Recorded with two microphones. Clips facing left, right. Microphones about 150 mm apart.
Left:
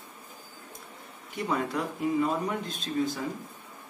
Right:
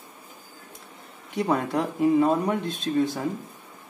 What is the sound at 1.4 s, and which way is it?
Speech, 60° right (ahead or behind).